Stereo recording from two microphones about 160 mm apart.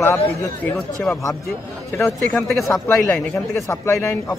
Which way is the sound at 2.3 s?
Centre (ahead or behind).